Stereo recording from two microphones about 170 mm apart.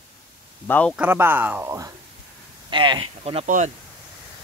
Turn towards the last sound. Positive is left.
turn(degrees=-35)  # may be behind; listen again after turning